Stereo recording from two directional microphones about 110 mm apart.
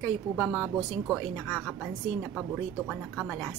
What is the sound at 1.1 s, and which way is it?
A woman's voice, 5° left (ahead or behind).